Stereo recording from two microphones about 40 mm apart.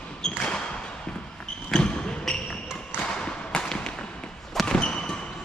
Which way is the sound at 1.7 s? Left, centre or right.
Left.